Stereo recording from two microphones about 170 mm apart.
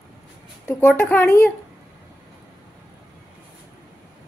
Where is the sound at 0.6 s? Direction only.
10° left (ahead or behind).